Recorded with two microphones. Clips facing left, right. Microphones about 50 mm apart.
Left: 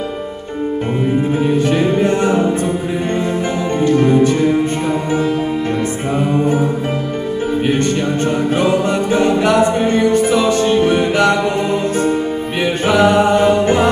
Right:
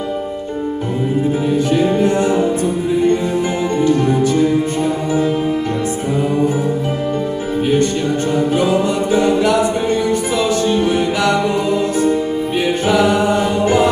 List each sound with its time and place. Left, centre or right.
1.6 s music: left
3.7 s music: left
6.1 s music: left
8.5 s music: left
12.5 s music: left